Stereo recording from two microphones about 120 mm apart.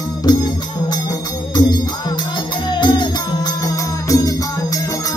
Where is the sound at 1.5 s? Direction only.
35° left (ahead or behind).